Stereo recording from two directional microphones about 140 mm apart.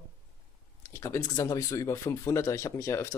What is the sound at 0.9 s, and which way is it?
Speech, 20° left (ahead or behind).